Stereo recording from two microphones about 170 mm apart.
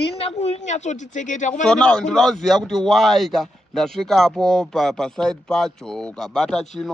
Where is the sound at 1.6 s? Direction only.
5° left (ahead or behind).